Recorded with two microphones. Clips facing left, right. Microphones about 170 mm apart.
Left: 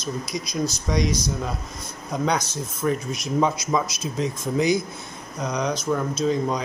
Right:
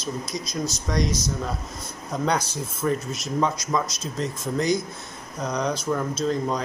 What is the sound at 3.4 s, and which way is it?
Speech, 10° left (ahead or behind).